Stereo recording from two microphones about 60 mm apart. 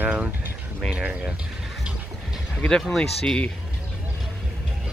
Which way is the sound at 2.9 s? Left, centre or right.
Centre.